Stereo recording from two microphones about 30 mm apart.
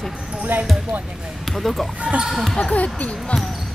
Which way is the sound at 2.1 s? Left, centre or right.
Centre.